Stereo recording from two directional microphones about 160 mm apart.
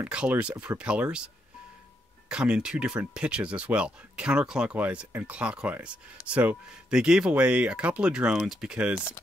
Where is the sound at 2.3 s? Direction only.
5° right (ahead or behind).